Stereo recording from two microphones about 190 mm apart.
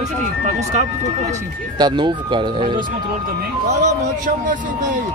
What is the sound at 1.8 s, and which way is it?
Speech, 20° right (ahead or behind).